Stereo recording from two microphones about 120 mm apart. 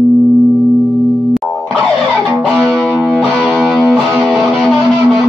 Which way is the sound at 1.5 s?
10° left (ahead or behind).